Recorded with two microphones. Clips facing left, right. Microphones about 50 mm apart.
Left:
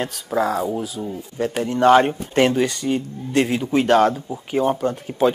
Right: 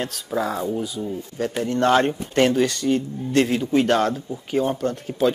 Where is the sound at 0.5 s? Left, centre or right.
Left.